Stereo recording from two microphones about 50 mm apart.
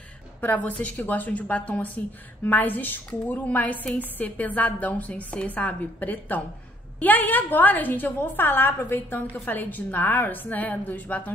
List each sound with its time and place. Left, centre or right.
0.4 s a woman's voice: left